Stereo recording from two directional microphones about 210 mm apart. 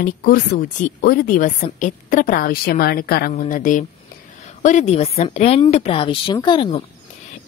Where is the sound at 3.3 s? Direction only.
35° left (ahead or behind).